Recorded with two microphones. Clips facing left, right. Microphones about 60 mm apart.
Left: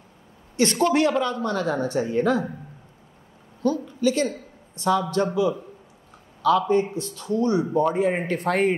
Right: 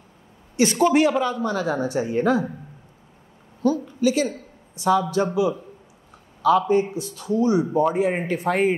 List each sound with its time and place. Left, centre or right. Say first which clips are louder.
0.6 s a woman's voice: right 2 dB; centre
3.6 s a woman's voice: right 2 dB; centre
6.7 s a woman's voice: right 1 dB; centre